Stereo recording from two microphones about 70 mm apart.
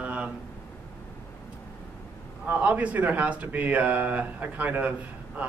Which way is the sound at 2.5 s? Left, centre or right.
Right.